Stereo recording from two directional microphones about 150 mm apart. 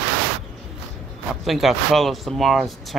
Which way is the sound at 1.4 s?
Centre (ahead or behind).